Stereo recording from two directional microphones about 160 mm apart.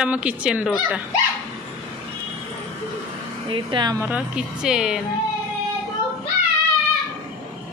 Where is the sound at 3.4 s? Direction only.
30° right (ahead or behind).